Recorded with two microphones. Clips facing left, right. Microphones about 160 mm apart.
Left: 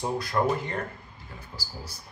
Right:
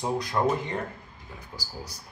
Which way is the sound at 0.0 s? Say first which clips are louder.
Even; 20° right (ahead or behind).